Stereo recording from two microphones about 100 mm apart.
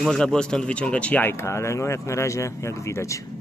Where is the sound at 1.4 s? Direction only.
30° left (ahead or behind).